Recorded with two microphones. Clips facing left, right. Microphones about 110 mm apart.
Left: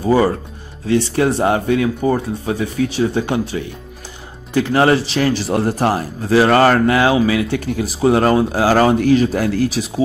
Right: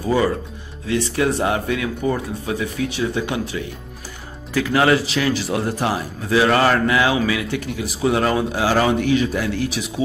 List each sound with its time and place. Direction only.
0.0 s speech: 35° left (ahead or behind)